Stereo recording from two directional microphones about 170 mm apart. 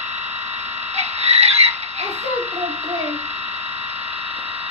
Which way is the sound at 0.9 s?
40° right (ahead or behind).